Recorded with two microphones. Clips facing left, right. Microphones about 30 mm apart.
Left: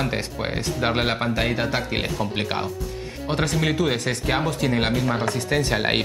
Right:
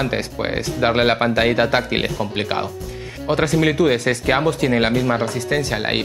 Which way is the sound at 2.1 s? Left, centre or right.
Centre.